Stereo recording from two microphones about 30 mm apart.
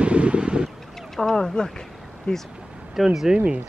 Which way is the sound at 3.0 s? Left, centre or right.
Centre.